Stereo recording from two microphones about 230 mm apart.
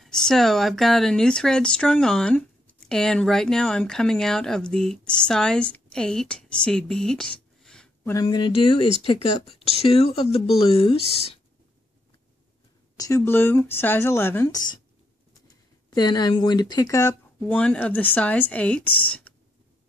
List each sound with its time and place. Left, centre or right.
0.0 s speech: centre; by 11.2 s left
12.9 s speech: centre
15.9 s speech: centre